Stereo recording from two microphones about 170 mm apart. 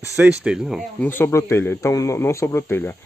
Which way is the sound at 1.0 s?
15° left (ahead or behind).